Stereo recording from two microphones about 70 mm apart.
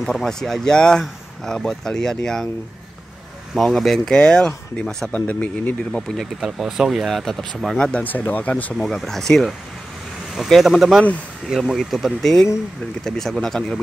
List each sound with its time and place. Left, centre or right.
0.0 s speech: centre
3.5 s speech: centre
5.1 s speech: left
6.4 s speech: centre
7.1 s speech: centre
7.8 s speech: left
8.7 s speech: centre